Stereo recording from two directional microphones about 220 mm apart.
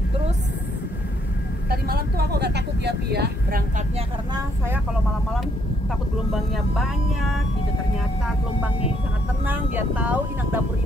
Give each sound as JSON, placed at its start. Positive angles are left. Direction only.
{"t": 1.7, "sound": "speech", "side_deg": -45}
{"t": 6.3, "sound": "speech", "side_deg": 0}
{"t": 9.5, "sound": "speech", "side_deg": -10}